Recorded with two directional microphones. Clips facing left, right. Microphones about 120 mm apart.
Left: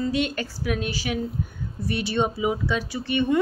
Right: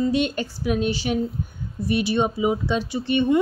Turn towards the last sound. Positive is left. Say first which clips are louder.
# right 3 dB
turn(degrees=-25)  # may be behind; listen again after turning